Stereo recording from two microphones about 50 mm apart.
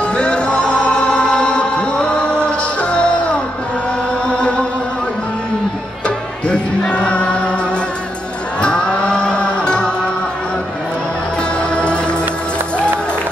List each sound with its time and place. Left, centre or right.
0.0 s music: left
4.3 s chant: left
6.0 s music: left
11.7 s music: left